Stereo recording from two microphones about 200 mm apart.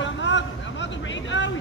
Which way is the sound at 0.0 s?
65° left (ahead or behind).